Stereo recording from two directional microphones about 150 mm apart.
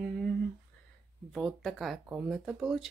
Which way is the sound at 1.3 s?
Centre (ahead or behind).